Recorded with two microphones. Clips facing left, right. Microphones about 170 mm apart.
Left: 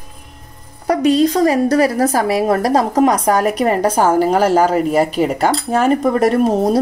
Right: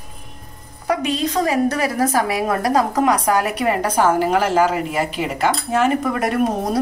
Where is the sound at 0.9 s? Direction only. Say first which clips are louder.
Left 8 dB; 40° left (ahead or behind).